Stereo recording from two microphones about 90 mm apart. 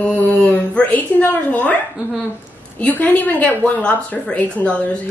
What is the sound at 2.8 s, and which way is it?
Speech, 20° left (ahead or behind).